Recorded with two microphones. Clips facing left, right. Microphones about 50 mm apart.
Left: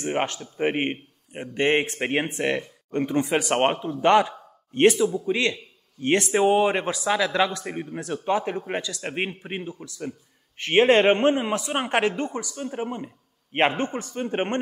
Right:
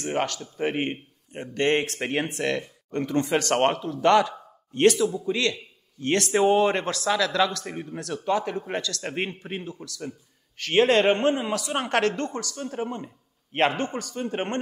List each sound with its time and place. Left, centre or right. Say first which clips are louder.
0.0 s speech: left 1 dB; left